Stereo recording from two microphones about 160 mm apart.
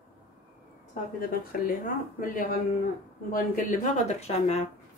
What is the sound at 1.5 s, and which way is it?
Speech, 60° left (ahead or behind).